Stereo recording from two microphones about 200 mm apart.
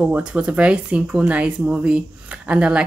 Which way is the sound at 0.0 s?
5° right (ahead or behind).